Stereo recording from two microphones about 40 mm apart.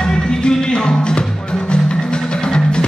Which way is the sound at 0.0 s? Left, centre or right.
Centre.